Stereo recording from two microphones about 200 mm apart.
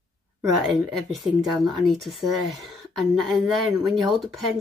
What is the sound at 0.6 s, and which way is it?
Speech, centre (ahead or behind).